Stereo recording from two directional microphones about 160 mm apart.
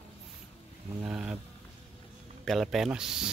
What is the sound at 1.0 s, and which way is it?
Speech, 5° right (ahead or behind).